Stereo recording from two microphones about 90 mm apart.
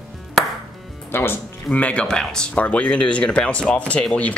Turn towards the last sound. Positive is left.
turn(degrees=15)  # may be behind; listen again after turning